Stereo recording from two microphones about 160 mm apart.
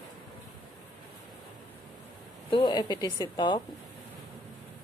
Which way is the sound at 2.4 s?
30° left (ahead or behind).